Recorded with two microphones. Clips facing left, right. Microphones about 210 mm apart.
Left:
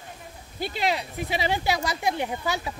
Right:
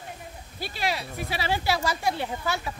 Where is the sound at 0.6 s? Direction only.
20° left (ahead or behind).